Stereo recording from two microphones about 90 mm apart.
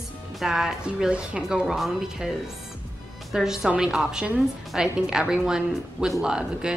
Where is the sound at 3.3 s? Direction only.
5° right (ahead or behind).